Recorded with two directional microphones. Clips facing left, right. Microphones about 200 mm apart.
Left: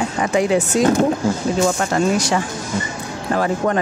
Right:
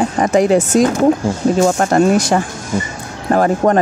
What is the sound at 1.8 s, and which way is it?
Speech, 50° right (ahead or behind).